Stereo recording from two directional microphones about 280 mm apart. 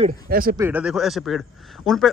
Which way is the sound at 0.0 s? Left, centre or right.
Right.